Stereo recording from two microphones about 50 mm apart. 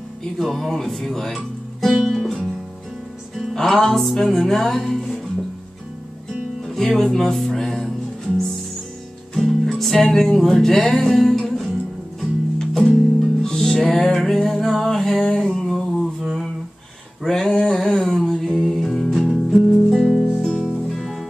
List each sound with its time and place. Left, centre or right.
0.4 s music: centre
3.5 s music: centre
6.6 s music: centre
9.3 s music: centre
16.2 s humming: centre
17.2 s music: centre